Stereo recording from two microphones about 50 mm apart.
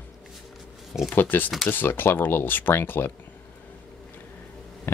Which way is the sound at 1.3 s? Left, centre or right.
Left.